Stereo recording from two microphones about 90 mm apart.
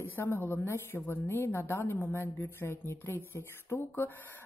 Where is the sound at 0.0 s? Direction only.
25° left (ahead or behind).